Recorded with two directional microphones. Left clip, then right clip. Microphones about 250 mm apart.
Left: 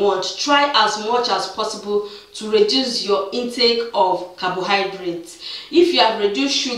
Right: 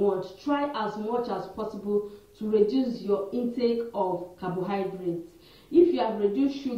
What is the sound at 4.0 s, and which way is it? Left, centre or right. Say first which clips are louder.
Speech: left 11 dB; left.